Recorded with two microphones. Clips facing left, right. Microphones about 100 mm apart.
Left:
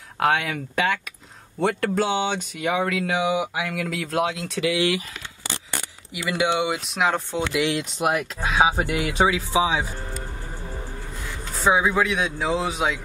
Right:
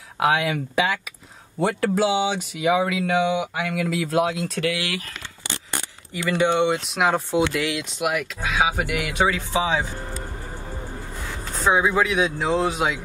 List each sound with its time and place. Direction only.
0.2 s speech: centre (ahead or behind)
4.7 s speech: 20° left (ahead or behind)
6.3 s speech: 5° left (ahead or behind); by 7.5 s 10° right (ahead or behind)
7.7 s speech: 35° left (ahead or behind)
9.3 s speech: 10° left (ahead or behind)
11.5 s speech: centre (ahead or behind)